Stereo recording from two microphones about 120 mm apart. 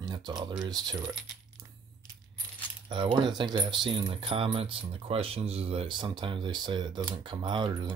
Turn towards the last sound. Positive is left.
turn(degrees=-40)  # may be behind; listen again after turning